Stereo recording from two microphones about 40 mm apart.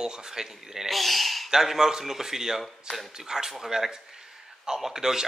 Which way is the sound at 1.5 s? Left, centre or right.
Centre.